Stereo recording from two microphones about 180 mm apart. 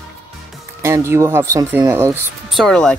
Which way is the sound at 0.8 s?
15° right (ahead or behind).